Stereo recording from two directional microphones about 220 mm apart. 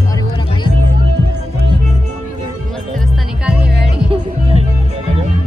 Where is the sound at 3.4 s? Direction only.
5° right (ahead or behind).